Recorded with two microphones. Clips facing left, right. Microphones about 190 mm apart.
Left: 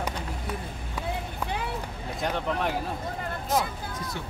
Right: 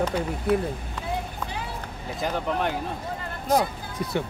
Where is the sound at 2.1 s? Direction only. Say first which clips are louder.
Right 2 dB; centre (ahead or behind).